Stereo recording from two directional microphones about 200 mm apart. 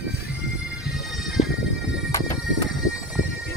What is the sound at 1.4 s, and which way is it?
Music, 35° left (ahead or behind).